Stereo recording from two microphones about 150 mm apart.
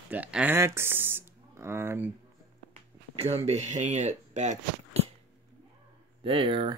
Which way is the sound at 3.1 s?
45° right (ahead or behind).